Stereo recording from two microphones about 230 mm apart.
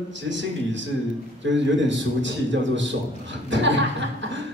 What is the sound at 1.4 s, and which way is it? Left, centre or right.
A woman's voice, right.